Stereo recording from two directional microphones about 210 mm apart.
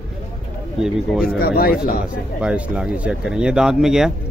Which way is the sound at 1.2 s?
45° left (ahead or behind).